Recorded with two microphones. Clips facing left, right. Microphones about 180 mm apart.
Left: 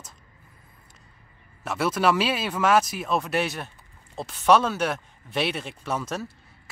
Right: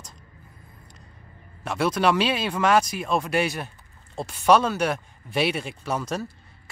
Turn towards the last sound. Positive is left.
turn(degrees=0)  # may be behind; listen again after turning